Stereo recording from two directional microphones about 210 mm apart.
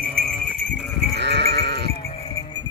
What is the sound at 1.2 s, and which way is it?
Sheep, 55° right (ahead or behind).